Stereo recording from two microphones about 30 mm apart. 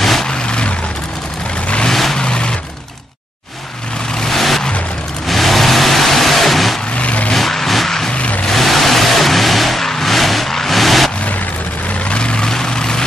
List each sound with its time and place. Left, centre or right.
0.0 s vehicle: centre
0.3 s vehicle: left
1.9 s vehicle: centre
2.1 s vehicle: left
4.2 s vehicle: centre
7.0 s vehicle: left
7.3 s vehicle: centre
8.1 s vehicle: left
8.5 s vehicle: centre
12.1 s vehicle: left
12.4 s vehicle: left